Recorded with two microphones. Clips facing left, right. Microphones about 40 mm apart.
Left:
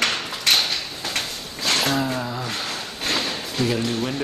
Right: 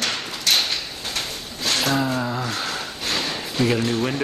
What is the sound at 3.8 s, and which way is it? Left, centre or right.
Speech, centre.